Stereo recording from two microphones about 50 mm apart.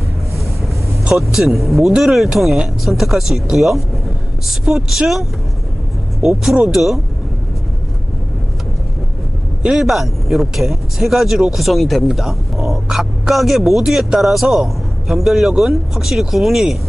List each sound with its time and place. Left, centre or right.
1.1 s speech: centre
6.2 s speech: centre
9.6 s speech: centre